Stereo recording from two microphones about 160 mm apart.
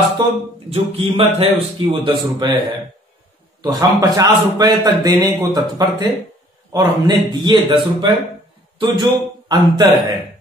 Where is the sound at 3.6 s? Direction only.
25° right (ahead or behind).